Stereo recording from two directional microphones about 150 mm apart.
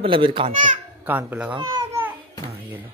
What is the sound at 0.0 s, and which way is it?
Speech, 35° right (ahead or behind).